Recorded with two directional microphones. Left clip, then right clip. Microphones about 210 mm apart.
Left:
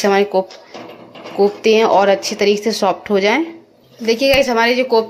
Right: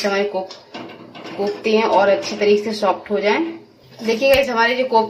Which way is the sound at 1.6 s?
45° left (ahead or behind).